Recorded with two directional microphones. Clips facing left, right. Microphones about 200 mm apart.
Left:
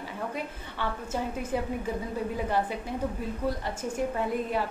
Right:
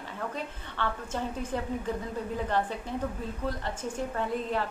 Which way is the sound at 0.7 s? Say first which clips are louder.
Left 1 dB; 10° left (ahead or behind).